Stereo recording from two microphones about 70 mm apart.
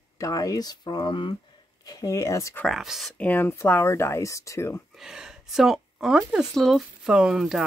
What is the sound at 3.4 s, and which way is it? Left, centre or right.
Speech, left.